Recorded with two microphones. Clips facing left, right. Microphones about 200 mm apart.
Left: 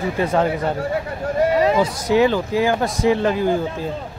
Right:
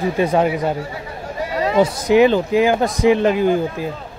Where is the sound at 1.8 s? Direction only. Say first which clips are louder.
Right 4 dB; 15° right (ahead or behind).